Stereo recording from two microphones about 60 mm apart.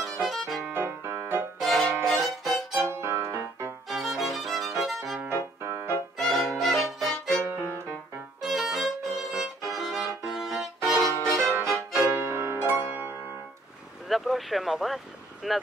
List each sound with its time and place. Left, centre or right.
0.3 s violin: centre
0.7 s music: right
1.6 s music: centre
2.9 s music: right
3.9 s violin: centre
5.6 s music: right
6.1 s violin: centre
7.4 s music: right
8.4 s violin: centre
11.7 s music: right
14.0 s speech: centre